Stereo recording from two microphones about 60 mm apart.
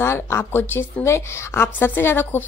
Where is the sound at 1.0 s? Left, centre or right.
Left.